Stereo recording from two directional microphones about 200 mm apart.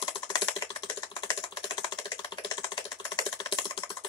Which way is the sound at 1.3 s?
25° left (ahead or behind).